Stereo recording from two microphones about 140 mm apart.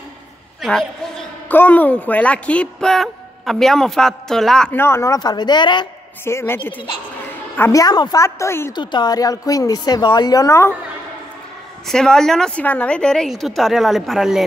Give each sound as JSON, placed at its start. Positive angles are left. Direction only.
{"t": 0.6, "sound": "a woman's voice", "side_deg": 0}
{"t": 1.5, "sound": "a woman's voice", "side_deg": 15}
{"t": 4.7, "sound": "a woman's voice", "side_deg": 20}
{"t": 6.2, "sound": "a woman's voice", "side_deg": 15}
{"t": 8.7, "sound": "a woman's voice", "side_deg": 30}
{"t": 11.9, "sound": "a woman's voice", "side_deg": 5}